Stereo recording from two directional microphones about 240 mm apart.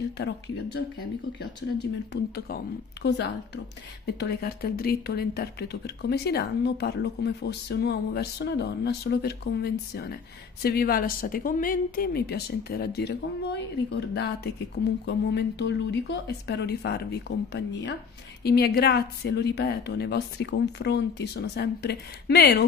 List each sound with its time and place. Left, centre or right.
0.2 s speech: left
2.3 s speech: left